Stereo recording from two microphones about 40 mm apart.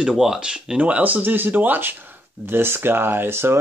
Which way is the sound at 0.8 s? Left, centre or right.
Right.